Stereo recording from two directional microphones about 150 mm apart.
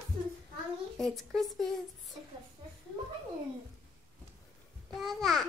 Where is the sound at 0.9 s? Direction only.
Centre (ahead or behind).